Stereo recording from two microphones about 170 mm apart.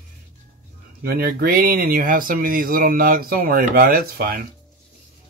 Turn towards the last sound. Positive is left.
turn(degrees=-60)  # may be behind; listen again after turning